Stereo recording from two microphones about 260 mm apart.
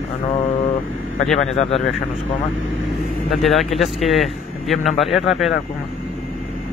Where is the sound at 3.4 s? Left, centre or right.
Centre.